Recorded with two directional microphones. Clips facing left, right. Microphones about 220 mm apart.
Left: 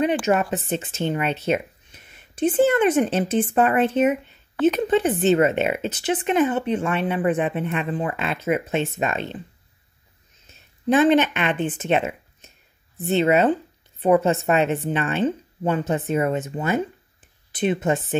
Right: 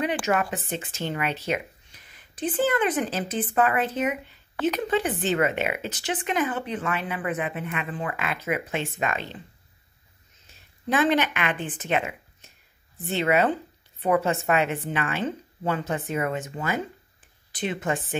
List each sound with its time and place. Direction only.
0.3 s speech: 30° left (ahead or behind)
10.9 s speech: 25° left (ahead or behind)